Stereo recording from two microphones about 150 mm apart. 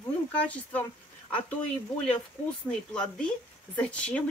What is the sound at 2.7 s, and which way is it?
Speech, 5° left (ahead or behind).